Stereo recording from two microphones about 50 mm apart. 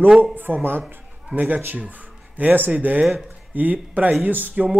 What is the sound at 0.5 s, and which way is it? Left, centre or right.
Speech, right.